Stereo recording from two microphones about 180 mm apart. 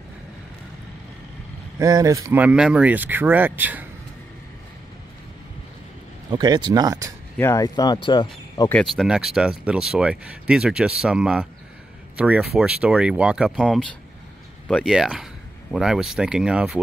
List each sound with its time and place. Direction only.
1.8 s speech: 20° right (ahead or behind)
6.3 s speech: 25° right (ahead or behind)
7.3 s speech: 15° left (ahead or behind)
8.6 s speech: 5° left (ahead or behind)